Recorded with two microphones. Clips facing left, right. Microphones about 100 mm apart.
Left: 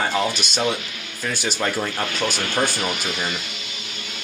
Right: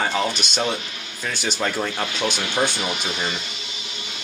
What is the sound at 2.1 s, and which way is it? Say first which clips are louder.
Speech: even; 45° left (ahead or behind).